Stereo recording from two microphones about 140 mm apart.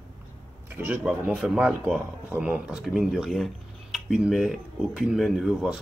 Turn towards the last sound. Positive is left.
turn(degrees=0)  # may be behind; listen again after turning